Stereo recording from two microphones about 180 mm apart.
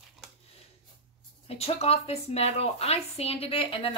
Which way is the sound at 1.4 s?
35° left (ahead or behind).